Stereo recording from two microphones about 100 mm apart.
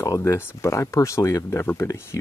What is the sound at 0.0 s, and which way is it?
Speech, 30° left (ahead or behind).